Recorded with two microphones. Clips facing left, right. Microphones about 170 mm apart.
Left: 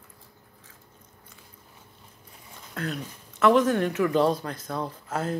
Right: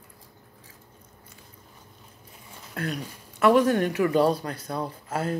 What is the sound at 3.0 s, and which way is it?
A woman's voice, 10° right (ahead or behind).